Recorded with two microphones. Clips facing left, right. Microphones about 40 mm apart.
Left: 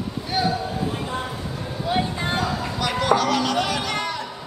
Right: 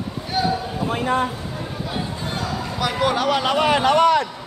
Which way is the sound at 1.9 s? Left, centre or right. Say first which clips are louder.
Left 7 dB; left.